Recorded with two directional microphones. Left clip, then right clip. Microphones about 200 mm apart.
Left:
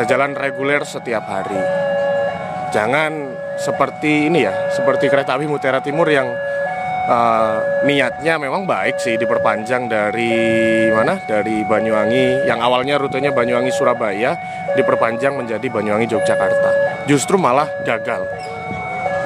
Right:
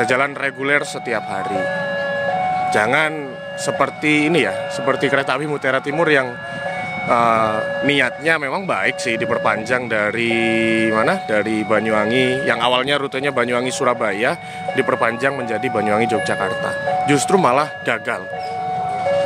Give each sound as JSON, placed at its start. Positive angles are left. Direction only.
{"t": 0.0, "sound": "speech", "side_deg": 5}
{"t": 2.7, "sound": "speech", "side_deg": 5}